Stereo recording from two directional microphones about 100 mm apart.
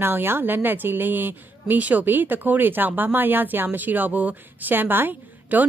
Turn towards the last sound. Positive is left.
turn(degrees=-20)  # may be behind; listen again after turning